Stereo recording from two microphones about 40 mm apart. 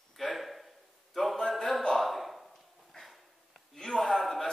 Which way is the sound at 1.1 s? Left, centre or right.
Centre.